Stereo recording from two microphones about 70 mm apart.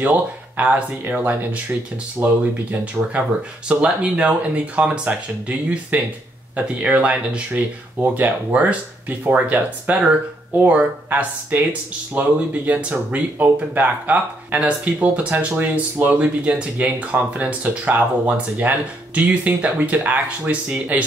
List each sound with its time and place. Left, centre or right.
0.0 s speech: right
3.6 s speech: centre